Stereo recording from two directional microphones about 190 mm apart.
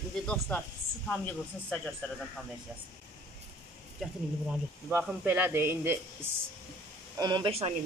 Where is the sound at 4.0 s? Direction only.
5° right (ahead or behind).